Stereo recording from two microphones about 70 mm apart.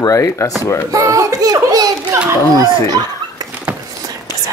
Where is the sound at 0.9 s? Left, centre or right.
Right.